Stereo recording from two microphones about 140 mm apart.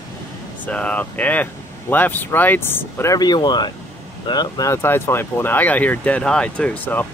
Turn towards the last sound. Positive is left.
turn(degrees=10)  # may be behind; listen again after turning